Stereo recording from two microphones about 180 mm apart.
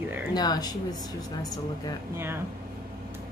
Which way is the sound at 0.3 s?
20° left (ahead or behind).